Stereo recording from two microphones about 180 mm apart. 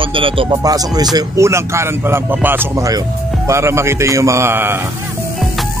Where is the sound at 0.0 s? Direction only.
30° right (ahead or behind).